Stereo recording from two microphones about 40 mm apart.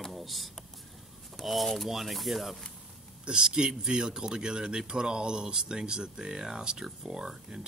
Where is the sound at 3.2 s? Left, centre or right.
Centre.